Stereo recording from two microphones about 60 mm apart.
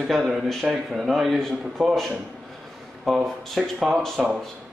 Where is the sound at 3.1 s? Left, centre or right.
Centre.